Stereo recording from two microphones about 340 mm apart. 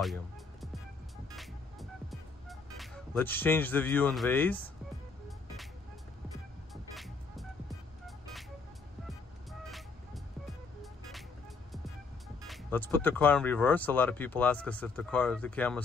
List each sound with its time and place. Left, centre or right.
0.0 s music: centre
2.8 s speech: centre
6.7 s music: centre
9.5 s music: centre
12.4 s speech: centre